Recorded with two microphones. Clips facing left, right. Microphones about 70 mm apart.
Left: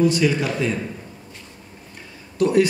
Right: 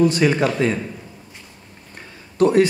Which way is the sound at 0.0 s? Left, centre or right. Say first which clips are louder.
Right 2 dB; right.